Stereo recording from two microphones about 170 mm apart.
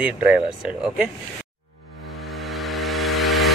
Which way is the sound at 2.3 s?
Centre (ahead or behind).